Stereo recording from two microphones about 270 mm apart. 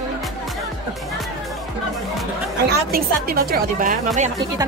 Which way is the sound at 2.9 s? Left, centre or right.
Right.